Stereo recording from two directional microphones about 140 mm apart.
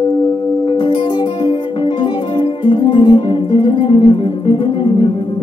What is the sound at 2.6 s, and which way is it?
Music, 40° left (ahead or behind).